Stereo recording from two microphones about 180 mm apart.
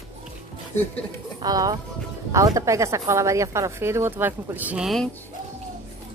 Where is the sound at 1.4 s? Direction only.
20° right (ahead or behind); by 5.1 s centre (ahead or behind).